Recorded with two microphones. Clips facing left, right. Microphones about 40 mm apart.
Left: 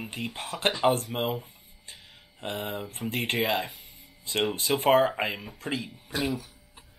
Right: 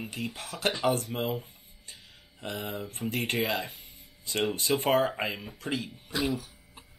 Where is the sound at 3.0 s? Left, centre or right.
Centre.